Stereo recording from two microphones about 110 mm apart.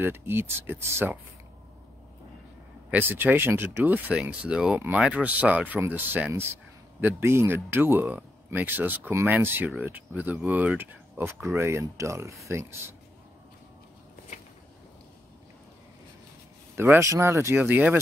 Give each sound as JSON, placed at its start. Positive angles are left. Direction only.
{"t": 0.0, "sound": "speech", "side_deg": -20}
{"t": 2.9, "sound": "speech", "side_deg": -20}
{"t": 16.7, "sound": "speech", "side_deg": -20}